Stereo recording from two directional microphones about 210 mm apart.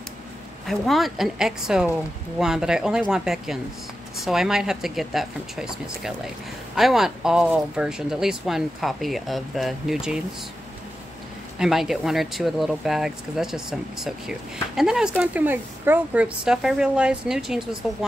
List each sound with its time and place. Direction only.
0.7 s speech: centre (ahead or behind)
11.5 s speech: centre (ahead or behind)